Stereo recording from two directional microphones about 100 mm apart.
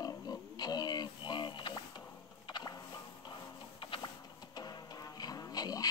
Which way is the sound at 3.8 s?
55° left (ahead or behind).